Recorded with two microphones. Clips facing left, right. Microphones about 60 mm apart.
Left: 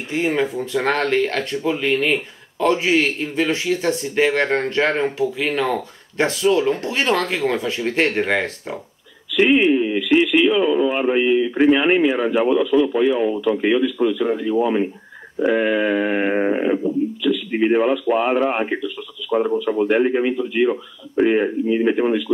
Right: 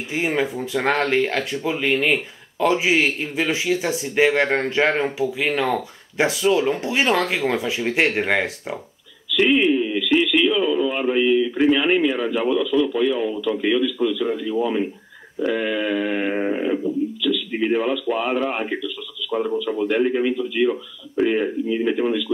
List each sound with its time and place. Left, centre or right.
0.1 s a man's voice: centre
9.3 s a sound: left
9.7 s radio: left
10.4 s speech: left
15.3 s a sound: left
19.2 s radio: left
19.8 s speech: left